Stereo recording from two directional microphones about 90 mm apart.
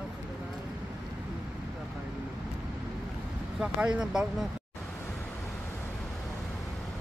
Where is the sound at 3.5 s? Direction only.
10° right (ahead or behind).